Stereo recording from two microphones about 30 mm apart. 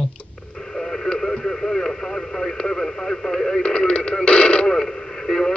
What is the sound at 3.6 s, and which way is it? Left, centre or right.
Radio, left.